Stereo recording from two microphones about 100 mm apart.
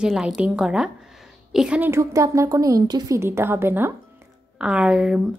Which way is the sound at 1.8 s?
30° right (ahead or behind).